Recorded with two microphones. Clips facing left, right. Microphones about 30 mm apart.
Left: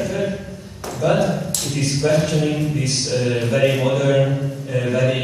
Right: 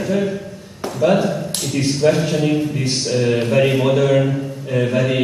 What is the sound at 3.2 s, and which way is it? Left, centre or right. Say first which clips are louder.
A man's voice: right 2 dB; centre.